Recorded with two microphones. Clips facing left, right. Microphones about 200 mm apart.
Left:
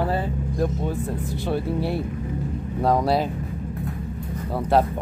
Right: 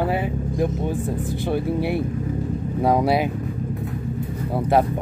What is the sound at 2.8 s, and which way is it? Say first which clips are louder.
Speech: right 1 dB; 10° right (ahead or behind).